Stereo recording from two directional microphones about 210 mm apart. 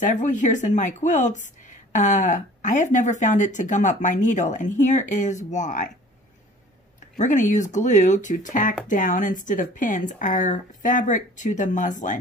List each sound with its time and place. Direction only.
0.0 s a woman's voice: 35° left (ahead or behind)
7.2 s a woman's voice: 35° left (ahead or behind)